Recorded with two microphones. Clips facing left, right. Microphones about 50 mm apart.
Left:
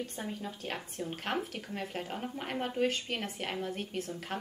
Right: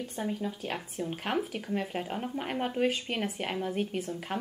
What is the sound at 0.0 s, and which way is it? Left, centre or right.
Speech, centre.